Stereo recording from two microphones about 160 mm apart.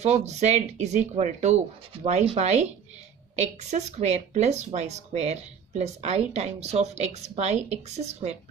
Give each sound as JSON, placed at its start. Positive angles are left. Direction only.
{"t": 0.0, "sound": "speech", "side_deg": -45}